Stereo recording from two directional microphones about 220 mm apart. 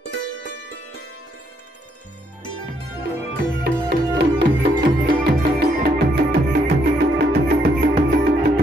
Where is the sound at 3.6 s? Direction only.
50° right (ahead or behind).